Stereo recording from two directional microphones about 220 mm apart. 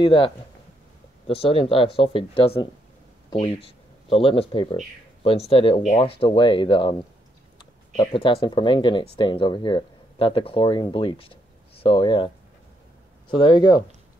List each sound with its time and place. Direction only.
0.0 s speech: 25° left (ahead or behind)
8.0 s speech: 25° left (ahead or behind)
13.3 s speech: 20° left (ahead or behind)